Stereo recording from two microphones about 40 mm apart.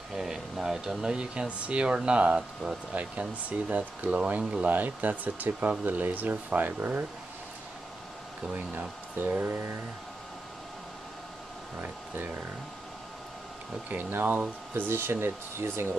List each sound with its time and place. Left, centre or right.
0.1 s speech: centre; by 4.4 s right
4.4 s speech: right
4.6 s speech: right
8.5 s speech: right
14.1 s speech: right
14.9 s speech: right